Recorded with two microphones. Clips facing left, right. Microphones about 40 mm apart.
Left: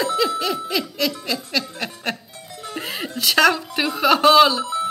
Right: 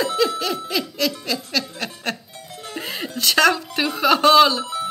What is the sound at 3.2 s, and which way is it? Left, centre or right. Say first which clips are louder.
Speech: even; centre.